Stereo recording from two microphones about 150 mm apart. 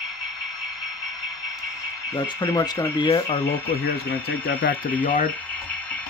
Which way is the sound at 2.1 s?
25° left (ahead or behind).